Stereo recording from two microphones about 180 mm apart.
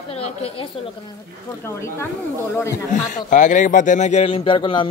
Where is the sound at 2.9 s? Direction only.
45° left (ahead or behind); by 4.8 s 30° left (ahead or behind).